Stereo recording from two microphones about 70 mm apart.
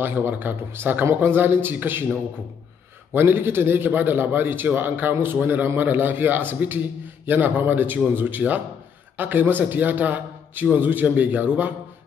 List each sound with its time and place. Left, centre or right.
0.0 s a man's voice: right
3.1 s a man's voice: right